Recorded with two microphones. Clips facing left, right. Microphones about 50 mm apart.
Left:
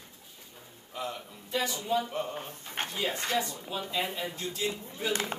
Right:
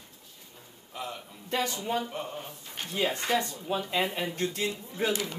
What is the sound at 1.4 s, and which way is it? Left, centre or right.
Speech, right.